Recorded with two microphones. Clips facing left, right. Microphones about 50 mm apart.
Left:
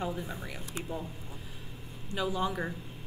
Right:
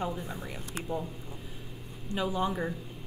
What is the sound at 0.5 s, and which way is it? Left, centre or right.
Speech, centre.